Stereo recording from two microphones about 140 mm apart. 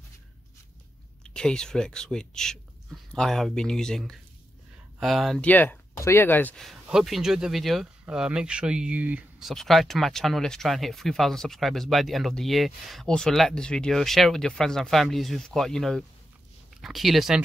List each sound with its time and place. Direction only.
1.2 s speech: 5° left (ahead or behind)
6.6 s speech: centre (ahead or behind)
9.5 s speech: centre (ahead or behind)